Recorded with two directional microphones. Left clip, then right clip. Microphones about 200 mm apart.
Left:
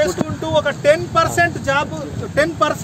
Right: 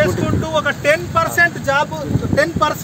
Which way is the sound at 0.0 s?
55° left (ahead or behind).